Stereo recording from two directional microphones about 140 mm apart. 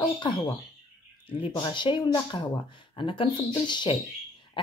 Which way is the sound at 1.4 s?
35° left (ahead or behind).